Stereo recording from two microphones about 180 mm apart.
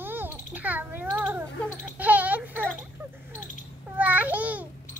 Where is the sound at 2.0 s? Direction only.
10° right (ahead or behind).